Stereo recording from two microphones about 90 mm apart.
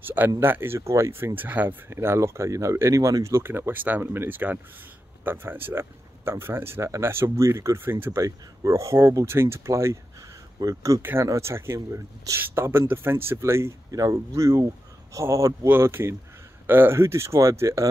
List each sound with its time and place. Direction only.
0.0 s speech: 20° right (ahead or behind)
8.2 s speech: 35° right (ahead or behind)
11.0 s speech: 25° right (ahead or behind)